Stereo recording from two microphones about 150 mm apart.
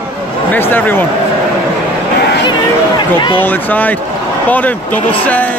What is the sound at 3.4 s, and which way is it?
Speech, 10° left (ahead or behind).